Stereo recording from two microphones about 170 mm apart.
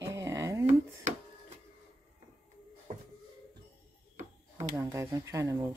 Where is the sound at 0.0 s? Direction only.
15° right (ahead or behind).